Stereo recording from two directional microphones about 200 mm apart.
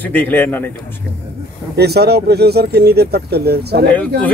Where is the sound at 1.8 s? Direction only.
55° right (ahead or behind).